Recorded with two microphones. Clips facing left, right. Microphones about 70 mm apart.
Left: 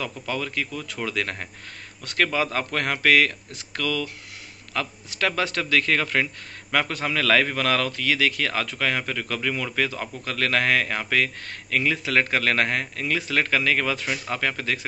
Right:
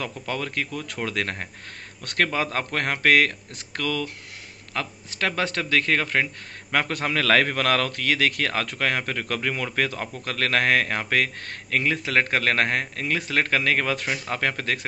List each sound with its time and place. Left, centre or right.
0.0 s speech: right
6.9 s speech: right